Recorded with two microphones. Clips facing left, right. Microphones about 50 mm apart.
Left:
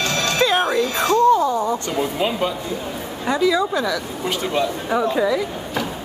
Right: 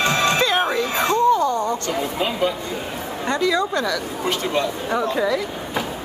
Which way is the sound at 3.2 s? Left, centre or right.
Centre.